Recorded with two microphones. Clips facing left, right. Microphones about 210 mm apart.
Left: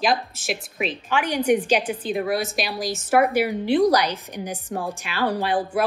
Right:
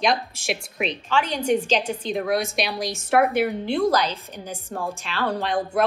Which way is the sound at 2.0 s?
5° left (ahead or behind).